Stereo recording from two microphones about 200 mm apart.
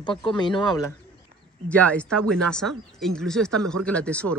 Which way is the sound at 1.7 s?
5° left (ahead or behind).